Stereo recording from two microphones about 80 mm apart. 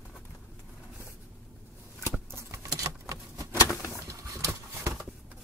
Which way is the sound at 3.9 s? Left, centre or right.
Right.